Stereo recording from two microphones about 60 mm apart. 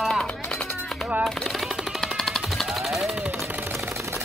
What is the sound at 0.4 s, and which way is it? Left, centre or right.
Music, left.